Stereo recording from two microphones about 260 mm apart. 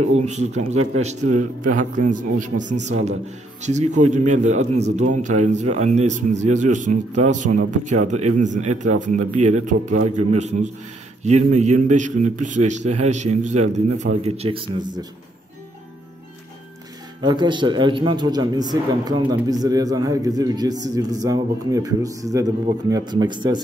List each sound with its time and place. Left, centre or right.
0.0 s a man's voice: right
17.2 s a man's voice: centre